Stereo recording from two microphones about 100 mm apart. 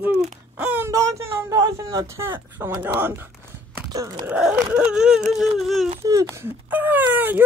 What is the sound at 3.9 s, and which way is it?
Wail, 40° right (ahead or behind).